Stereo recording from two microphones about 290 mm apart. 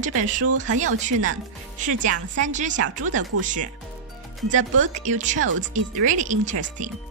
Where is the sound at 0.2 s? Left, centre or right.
Right.